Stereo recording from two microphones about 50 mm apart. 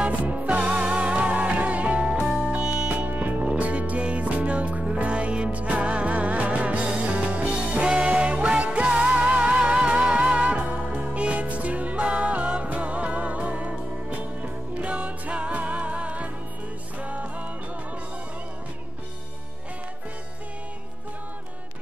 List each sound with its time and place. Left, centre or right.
0.0 s music: right
2.9 s music: right